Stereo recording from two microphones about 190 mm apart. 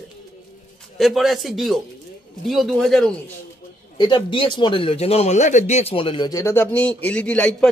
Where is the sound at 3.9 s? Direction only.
25° left (ahead or behind).